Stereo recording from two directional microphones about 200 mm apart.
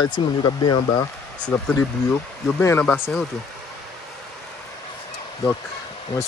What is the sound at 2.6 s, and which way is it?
Speech, 10° left (ahead or behind).